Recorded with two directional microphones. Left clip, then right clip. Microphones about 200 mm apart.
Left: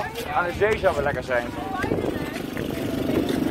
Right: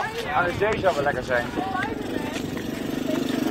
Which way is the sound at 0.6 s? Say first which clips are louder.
Left 1 dB; 15° right (ahead or behind).